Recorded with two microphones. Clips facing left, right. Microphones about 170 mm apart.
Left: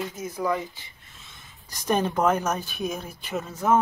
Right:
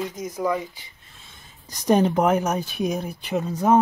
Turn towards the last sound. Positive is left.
turn(degrees=-15)  # may be behind; listen again after turning